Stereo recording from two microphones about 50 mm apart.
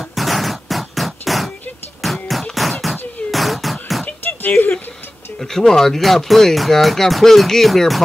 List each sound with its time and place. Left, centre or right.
0.1 s music: centre
4.5 s a sound: left
5.7 s speech: centre